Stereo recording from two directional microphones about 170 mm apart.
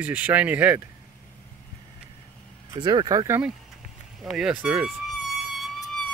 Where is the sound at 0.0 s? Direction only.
10° right (ahead or behind).